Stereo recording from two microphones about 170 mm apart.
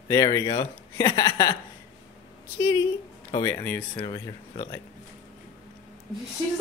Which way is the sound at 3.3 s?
20° left (ahead or behind).